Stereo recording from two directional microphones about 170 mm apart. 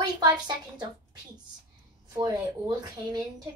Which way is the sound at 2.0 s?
20° right (ahead or behind).